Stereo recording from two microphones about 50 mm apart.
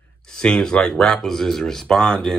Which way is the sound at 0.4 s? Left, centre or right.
Centre.